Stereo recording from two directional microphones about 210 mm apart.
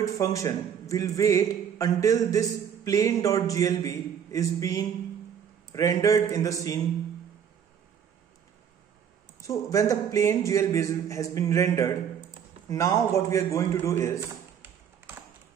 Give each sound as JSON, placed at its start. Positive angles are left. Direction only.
{"t": 0.0, "sound": "a man's voice", "side_deg": 15}
{"t": 9.5, "sound": "a man's voice", "side_deg": 15}